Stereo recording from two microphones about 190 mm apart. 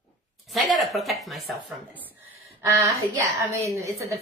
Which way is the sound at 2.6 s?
15° right (ahead or behind).